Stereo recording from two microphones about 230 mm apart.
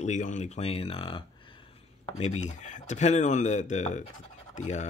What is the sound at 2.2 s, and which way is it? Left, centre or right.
Speech, left.